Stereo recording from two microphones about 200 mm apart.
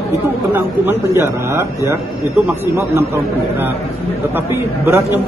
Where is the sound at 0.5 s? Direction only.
10° right (ahead or behind).